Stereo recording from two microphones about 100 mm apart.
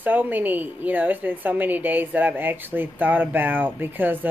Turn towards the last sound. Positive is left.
turn(degrees=-20)  # may be behind; listen again after turning